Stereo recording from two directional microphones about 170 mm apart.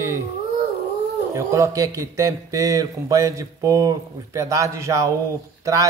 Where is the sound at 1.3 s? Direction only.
20° right (ahead or behind).